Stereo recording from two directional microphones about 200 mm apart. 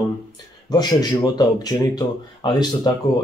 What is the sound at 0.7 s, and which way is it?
Speech, 20° left (ahead or behind).